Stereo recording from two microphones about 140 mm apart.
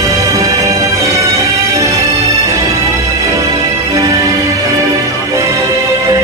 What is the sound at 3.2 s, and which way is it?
Music, 25° right (ahead or behind).